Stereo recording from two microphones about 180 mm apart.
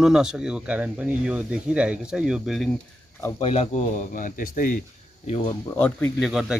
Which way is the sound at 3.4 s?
35° left (ahead or behind).